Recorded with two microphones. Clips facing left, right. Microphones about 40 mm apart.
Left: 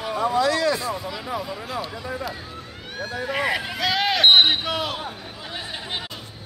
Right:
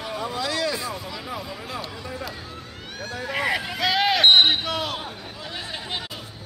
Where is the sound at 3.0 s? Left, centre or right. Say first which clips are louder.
Left 3 dB; centre.